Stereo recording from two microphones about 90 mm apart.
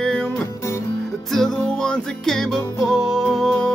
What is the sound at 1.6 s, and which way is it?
Music, 10° left (ahead or behind).